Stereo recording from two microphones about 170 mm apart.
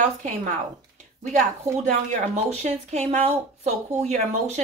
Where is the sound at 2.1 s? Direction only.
40° right (ahead or behind).